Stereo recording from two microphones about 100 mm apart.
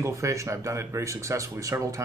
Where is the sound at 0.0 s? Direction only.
30° right (ahead or behind).